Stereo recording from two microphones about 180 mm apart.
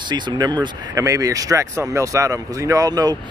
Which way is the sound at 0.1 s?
25° right (ahead or behind).